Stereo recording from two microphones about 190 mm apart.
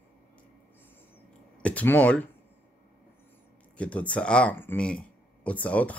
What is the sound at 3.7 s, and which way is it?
Speech, 5° left (ahead or behind).